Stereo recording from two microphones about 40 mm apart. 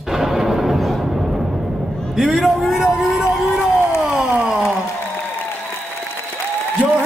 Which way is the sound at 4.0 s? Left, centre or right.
Centre.